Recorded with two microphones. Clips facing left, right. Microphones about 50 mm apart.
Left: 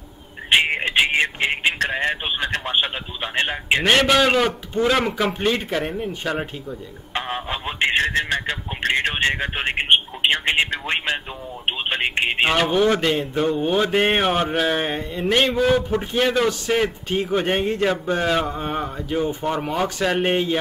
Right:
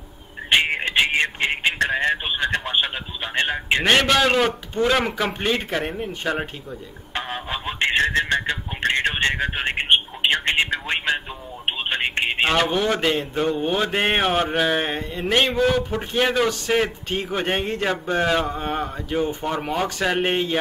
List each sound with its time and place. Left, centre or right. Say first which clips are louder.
0.5 s a sound: left 1 dB; centre
2.0 s speech: right 1 dB; centre
3.3 s mantra: even; centre
5.8 s speech: left 1 dB; centre
7.2 s a sound: left 2 dB; centre
11.6 s mantra: left 1 dB; centre
16.2 s mantra: even; centre
16.6 s speech: even; centre
17.3 s mantra: left 3 dB; centre